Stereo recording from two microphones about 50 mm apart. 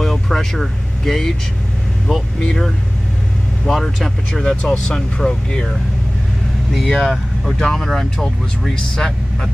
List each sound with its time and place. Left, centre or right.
0.0 s speech: centre
6.7 s speech: centre